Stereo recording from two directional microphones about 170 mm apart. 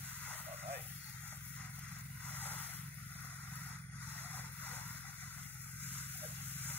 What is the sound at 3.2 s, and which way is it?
Vehicle, 10° left (ahead or behind).